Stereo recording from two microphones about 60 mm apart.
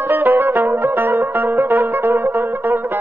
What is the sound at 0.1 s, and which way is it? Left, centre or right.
Music, right.